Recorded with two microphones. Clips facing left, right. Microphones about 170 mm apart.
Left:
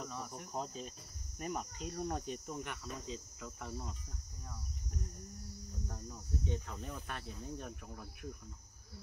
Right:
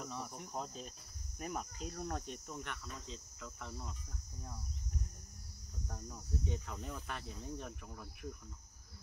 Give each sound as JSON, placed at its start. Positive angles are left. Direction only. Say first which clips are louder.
{"t": 0.0, "sound": "cricket", "louder": "even", "side_deg": 0}
{"t": 5.9, "sound": "cricket", "louder": "right 1 dB", "side_deg": 0}